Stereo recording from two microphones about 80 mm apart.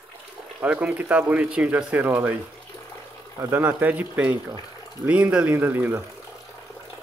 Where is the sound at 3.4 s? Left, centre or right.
Right.